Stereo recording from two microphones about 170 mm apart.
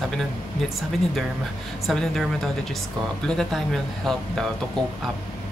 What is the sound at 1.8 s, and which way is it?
Speech, centre (ahead or behind).